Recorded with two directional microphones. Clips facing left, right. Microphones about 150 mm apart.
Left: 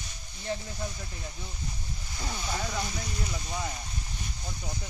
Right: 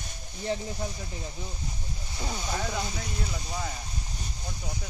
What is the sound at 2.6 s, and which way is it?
Speech, 5° right (ahead or behind).